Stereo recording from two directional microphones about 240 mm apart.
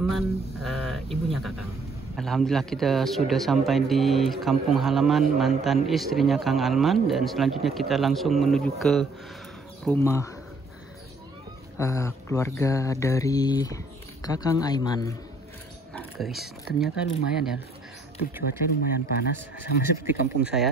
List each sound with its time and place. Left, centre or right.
0.0 s a man's voice: centre
9.8 s speech: centre
11.8 s speech: centre
15.9 s speech: centre
18.4 s speech: left
20.4 s a man's voice: centre